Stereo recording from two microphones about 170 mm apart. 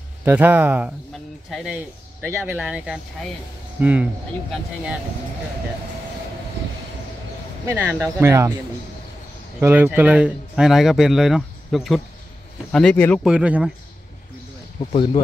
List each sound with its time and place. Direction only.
0.2 s speech: 10° right (ahead or behind)
7.6 s speech: 15° right (ahead or behind)
9.6 s speech: 10° right (ahead or behind); by 13.2 s 10° left (ahead or behind)
13.2 s speech: 5° right (ahead or behind)
14.8 s speech: 30° left (ahead or behind)